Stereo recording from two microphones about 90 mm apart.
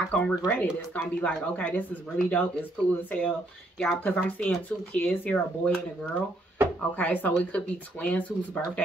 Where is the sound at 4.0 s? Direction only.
20° left (ahead or behind).